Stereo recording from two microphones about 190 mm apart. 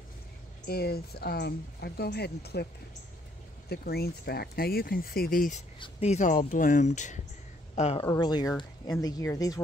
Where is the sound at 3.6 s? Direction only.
55° left (ahead or behind).